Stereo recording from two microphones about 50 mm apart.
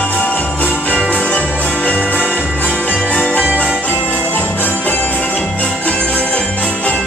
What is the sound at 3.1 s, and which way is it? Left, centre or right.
Jingle bell, left.